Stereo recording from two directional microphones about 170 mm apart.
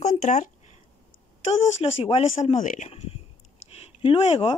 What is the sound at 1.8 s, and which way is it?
Speech, 35° left (ahead or behind).